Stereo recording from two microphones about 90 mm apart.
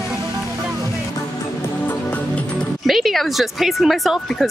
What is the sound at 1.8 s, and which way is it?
Music, 20° left (ahead or behind).